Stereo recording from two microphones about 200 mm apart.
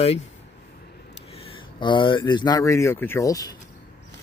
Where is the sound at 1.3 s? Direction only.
25° left (ahead or behind).